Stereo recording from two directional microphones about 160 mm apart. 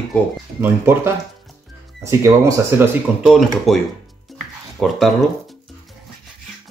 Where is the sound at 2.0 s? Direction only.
20° right (ahead or behind).